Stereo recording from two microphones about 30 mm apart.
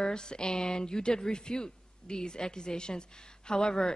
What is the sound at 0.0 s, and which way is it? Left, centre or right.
Speech, left.